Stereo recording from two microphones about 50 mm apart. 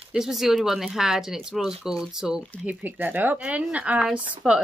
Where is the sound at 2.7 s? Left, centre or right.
Right.